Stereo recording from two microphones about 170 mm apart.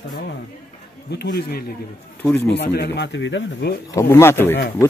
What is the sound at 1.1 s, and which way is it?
Speech, 70° left (ahead or behind).